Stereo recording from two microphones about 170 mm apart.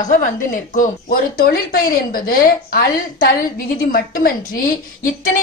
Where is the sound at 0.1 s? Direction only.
55° left (ahead or behind).